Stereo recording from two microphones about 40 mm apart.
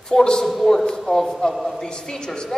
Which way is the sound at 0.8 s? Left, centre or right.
Centre.